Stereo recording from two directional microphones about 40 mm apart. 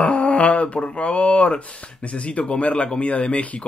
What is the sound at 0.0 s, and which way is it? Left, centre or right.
Speech, left.